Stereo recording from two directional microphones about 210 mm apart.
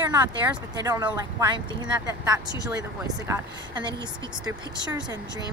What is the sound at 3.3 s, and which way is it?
Speech, 20° right (ahead or behind).